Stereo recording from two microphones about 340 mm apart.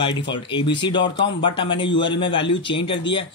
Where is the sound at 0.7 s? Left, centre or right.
Centre.